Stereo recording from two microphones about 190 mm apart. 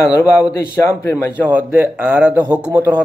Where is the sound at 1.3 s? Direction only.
10° right (ahead or behind).